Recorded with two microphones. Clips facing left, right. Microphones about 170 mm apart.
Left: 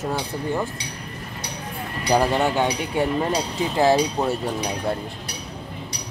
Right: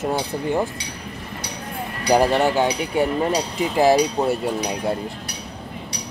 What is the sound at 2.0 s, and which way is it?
Speech, 15° right (ahead or behind).